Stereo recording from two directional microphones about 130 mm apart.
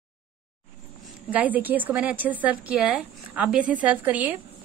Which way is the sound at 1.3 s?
10° right (ahead or behind).